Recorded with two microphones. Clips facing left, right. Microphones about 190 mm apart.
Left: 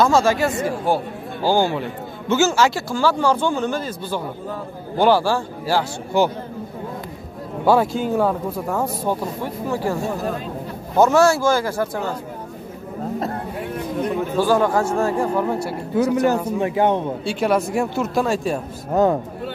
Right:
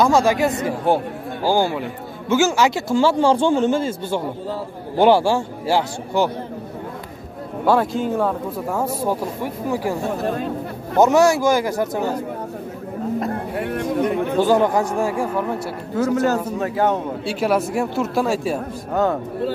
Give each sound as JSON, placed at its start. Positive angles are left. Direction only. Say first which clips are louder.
{"t": 0.0, "sound": "a man's voice", "louder": "right 1 dB", "side_deg": -15}
{"t": 1.4, "sound": "a man's voice", "louder": "even", "side_deg": -10}
{"t": 7.6, "sound": "speech", "louder": "left 1 dB", "side_deg": 5}
{"t": 8.6, "sound": "speech", "louder": "right 2 dB", "side_deg": -10}
{"t": 11.0, "sound": "speech", "louder": "right 1 dB", "side_deg": -15}
{"t": 13.6, "sound": "a sound", "louder": "right 5 dB", "side_deg": -65}
{"t": 14.3, "sound": "speech", "louder": "even", "side_deg": -20}
{"t": 15.9, "sound": "speech", "louder": "left 1 dB", "side_deg": 15}
{"t": 17.2, "sound": "speech", "louder": "even", "side_deg": -5}